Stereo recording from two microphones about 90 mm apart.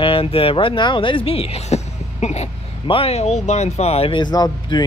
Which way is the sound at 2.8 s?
90° left.